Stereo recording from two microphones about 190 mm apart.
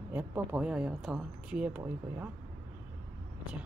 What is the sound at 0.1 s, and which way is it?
Speech, 10° right (ahead or behind).